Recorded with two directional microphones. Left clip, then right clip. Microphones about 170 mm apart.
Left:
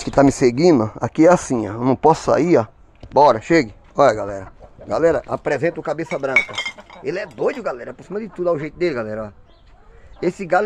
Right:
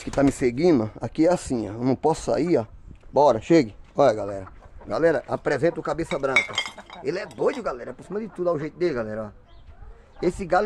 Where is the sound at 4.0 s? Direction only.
10° right (ahead or behind); by 9.3 s 15° left (ahead or behind).